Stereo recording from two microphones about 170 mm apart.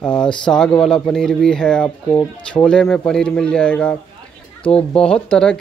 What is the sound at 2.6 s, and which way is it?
Speech, 5° left (ahead or behind).